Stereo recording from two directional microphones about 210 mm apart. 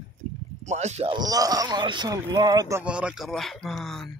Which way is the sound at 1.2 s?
15° right (ahead or behind).